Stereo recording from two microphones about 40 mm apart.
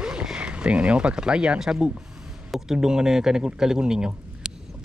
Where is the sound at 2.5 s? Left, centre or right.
Centre.